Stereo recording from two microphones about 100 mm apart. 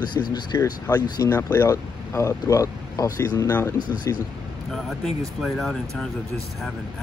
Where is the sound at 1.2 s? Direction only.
30° left (ahead or behind).